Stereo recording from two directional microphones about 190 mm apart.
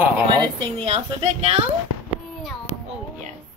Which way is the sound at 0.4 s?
25° right (ahead or behind).